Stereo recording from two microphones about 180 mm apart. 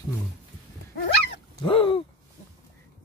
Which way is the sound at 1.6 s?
30° left (ahead or behind).